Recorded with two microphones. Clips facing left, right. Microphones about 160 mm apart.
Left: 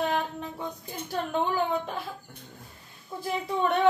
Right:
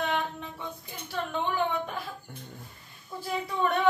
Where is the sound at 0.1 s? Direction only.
35° left (ahead or behind).